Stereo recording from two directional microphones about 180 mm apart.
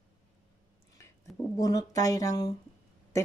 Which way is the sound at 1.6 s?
20° left (ahead or behind).